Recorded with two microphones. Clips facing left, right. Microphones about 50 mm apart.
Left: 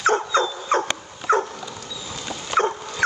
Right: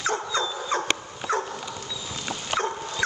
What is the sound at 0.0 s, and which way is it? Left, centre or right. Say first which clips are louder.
Dog: left 7 dB; left.